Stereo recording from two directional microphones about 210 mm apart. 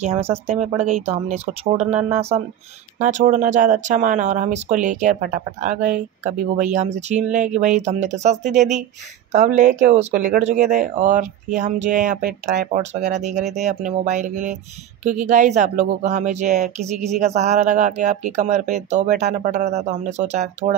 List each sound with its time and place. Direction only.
0.5 s speech: 30° right (ahead or behind)